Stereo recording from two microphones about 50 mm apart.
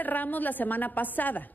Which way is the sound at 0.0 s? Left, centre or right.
Left.